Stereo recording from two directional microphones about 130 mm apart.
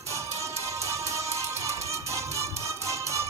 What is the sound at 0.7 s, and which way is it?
Music, 25° right (ahead or behind).